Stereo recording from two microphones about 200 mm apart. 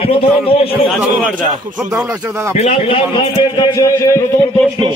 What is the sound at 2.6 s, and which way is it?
A man's voice, 30° left (ahead or behind).